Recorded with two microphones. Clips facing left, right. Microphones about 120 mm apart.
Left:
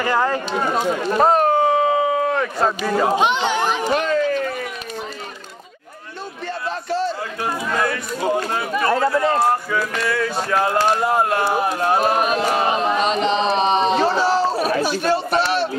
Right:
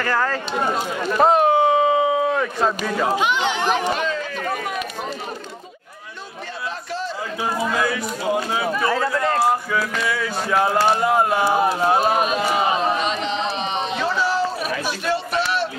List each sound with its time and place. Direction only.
0.0 s speech: 15° left (ahead or behind)
1.1 s a sound: centre (ahead or behind)
3.2 s speech: 30° left (ahead or behind)
3.8 s a sound: 45° left (ahead or behind)
7.4 s speech: 5° right (ahead or behind)
12.9 s chant: 40° left (ahead or behind)
13.9 s chatter: 30° left (ahead or behind)